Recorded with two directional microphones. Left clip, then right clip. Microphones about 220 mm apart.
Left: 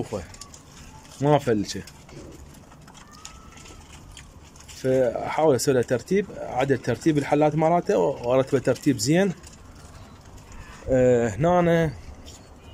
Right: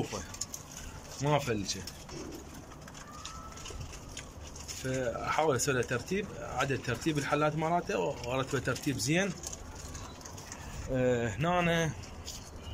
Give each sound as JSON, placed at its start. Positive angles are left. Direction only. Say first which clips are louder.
{"t": 1.2, "sound": "speech", "louder": "left 10 dB", "side_deg": 30}
{"t": 4.7, "sound": "speech", "louder": "left 13 dB", "side_deg": 25}
{"t": 10.9, "sound": "speech", "louder": "left 11 dB", "side_deg": 25}